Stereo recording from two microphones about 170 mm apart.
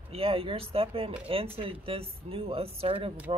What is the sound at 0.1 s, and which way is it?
Speech, 35° right (ahead or behind).